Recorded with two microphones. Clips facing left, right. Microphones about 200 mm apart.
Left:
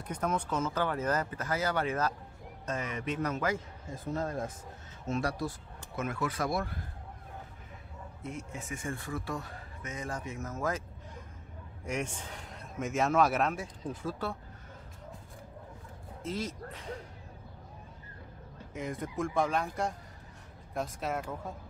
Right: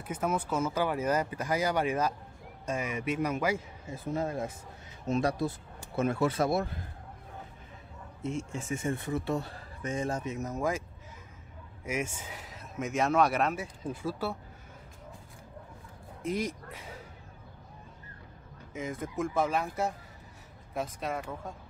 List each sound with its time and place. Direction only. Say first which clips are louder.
0.0 s speech: right 1 dB; 5° right (ahead or behind)
5.0 s a man's voice: right 4 dB; 20° right (ahead or behind)
8.2 s a man's voice: right 6 dB; 25° right (ahead or behind)
11.8 s a man's voice: right 1 dB; 5° right (ahead or behind)
16.2 s speech: right 4 dB; 15° right (ahead or behind)
18.7 s a man's voice: right 1 dB; centre (ahead or behind)